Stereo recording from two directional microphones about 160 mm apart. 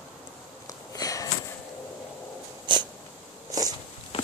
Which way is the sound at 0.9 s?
20° left (ahead or behind).